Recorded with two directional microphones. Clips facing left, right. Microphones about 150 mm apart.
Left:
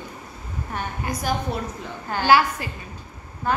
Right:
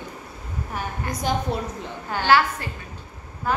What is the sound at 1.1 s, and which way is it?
Speech, 20° right (ahead or behind).